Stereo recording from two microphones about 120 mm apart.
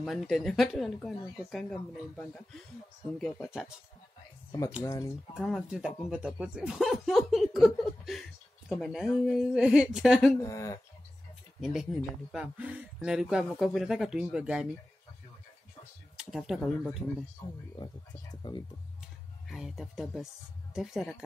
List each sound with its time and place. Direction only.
0.0 s speech: centre (ahead or behind)
3.4 s speech: 5° right (ahead or behind)
4.5 s speech: 30° left (ahead or behind)
5.3 s speech: 5° right (ahead or behind)
10.4 s speech: 30° left (ahead or behind)
11.6 s speech: 5° right (ahead or behind)
16.2 s speech: 5° right (ahead or behind)
17.4 s speech: 35° left (ahead or behind)
19.4 s speech: 5° right (ahead or behind)